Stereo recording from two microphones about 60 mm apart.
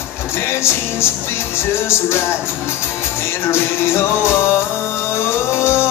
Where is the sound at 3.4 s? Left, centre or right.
Left.